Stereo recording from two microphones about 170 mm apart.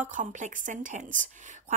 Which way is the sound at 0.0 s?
50° right (ahead or behind).